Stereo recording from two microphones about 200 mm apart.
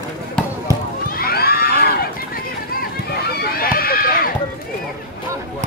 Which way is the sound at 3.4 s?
45° left (ahead or behind).